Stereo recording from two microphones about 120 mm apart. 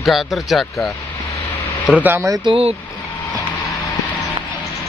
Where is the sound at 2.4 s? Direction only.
50° right (ahead or behind).